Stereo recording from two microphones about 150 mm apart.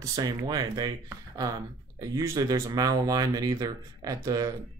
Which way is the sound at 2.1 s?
25° right (ahead or behind).